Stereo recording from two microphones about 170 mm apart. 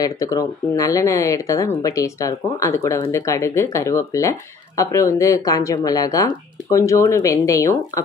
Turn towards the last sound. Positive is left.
turn(degrees=20)  # may be behind; listen again after turning